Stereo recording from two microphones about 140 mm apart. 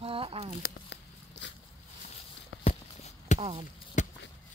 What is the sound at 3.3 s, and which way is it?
Speech, 40° right (ahead or behind).